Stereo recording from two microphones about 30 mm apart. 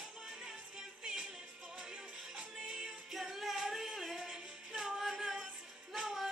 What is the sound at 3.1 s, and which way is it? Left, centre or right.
Music, centre.